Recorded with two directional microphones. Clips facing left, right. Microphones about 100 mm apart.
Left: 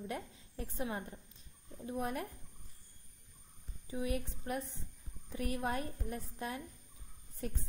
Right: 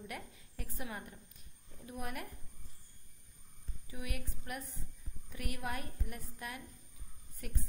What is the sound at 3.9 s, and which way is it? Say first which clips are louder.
A woman's voice: left 8 dB; 30° left (ahead or behind).